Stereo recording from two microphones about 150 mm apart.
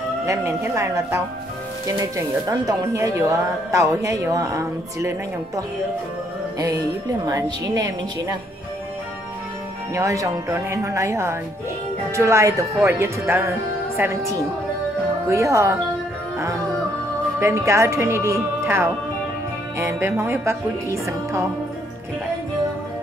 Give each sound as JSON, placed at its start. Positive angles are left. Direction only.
{"t": 0.3, "sound": "speech", "side_deg": -20}
{"t": 7.6, "sound": "speech", "side_deg": -25}
{"t": 9.9, "sound": "speech", "side_deg": -20}
{"t": 17.4, "sound": "speech", "side_deg": -20}